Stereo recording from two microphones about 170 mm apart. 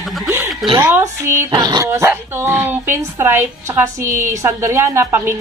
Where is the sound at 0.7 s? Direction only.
10° right (ahead or behind).